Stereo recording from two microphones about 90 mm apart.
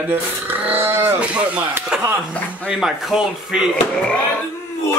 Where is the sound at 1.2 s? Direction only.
15° right (ahead or behind).